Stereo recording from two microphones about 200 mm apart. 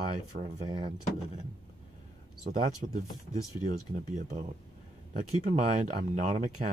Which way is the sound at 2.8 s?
45° right (ahead or behind).